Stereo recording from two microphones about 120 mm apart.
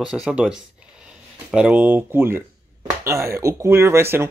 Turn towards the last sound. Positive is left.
turn(degrees=-20)  # may be behind; listen again after turning